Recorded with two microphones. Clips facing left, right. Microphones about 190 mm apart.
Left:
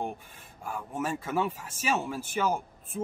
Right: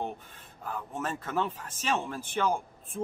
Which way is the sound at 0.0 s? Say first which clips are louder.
Left 1 dB; 10° left (ahead or behind).